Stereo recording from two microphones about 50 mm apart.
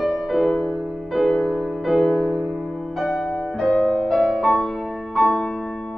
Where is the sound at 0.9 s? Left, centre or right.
Centre.